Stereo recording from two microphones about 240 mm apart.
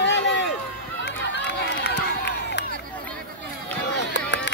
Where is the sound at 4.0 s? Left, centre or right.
Left.